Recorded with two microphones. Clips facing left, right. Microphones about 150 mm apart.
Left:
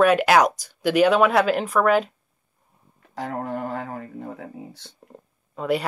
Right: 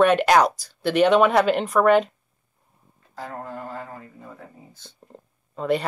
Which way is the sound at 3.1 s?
70° left (ahead or behind).